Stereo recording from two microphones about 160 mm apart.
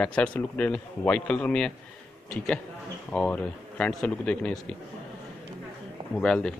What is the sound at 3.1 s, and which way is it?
A man's voice, 10° left (ahead or behind).